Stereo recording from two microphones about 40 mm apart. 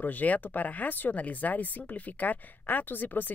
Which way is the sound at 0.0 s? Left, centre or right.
Left.